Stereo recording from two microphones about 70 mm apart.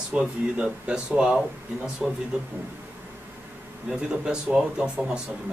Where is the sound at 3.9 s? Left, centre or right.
Centre.